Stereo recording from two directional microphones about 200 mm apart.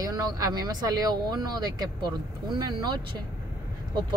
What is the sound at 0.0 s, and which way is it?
Speech, 20° right (ahead or behind).